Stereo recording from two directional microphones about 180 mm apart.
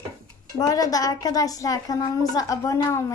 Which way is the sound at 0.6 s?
20° left (ahead or behind).